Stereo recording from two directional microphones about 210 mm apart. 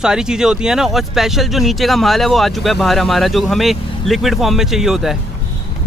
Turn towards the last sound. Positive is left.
turn(degrees=0)  # may be behind; listen again after turning